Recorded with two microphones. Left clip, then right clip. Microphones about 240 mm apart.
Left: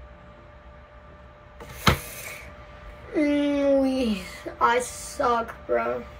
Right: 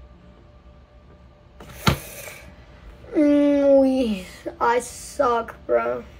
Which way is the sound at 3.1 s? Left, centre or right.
Centre.